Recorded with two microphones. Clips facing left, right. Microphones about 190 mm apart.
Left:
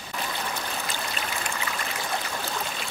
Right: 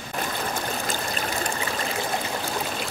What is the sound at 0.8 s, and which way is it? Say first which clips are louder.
Stream: right 4 dB; 45° right (ahead or behind).